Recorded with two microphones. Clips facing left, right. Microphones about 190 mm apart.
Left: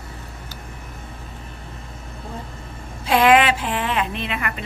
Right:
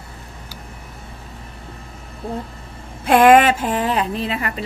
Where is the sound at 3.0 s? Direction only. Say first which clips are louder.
Right 4 dB; 50° right (ahead or behind); by 4.6 s 35° right (ahead or behind).